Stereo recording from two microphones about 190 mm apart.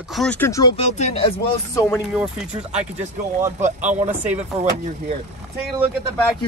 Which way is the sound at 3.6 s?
40° right (ahead or behind).